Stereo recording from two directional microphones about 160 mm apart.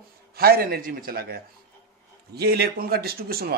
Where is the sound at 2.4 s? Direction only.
85° right.